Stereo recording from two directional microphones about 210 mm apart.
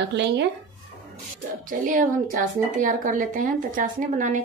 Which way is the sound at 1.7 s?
40° right (ahead or behind).